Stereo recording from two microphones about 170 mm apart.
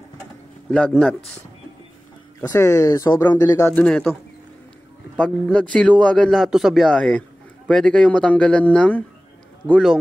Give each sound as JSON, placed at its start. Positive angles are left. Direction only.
{"t": 0.7, "sound": "speech", "side_deg": 5}
{"t": 2.4, "sound": "speech", "side_deg": 15}
{"t": 3.8, "sound": "a man's voice", "side_deg": 5}